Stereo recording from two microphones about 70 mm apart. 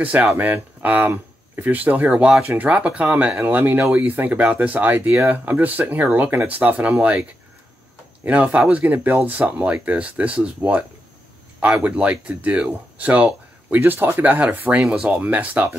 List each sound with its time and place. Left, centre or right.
0.0 s speech: right
8.2 s speech: right